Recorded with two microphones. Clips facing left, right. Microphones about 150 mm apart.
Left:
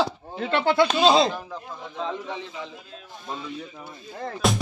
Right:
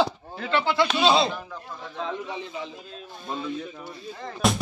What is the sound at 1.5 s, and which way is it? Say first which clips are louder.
Speech: left 2 dB; 20° left (ahead or behind).